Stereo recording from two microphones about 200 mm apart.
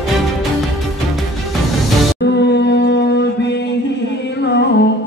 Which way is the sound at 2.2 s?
60° left (ahead or behind).